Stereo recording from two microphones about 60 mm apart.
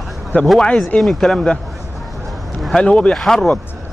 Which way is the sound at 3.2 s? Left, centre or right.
Centre.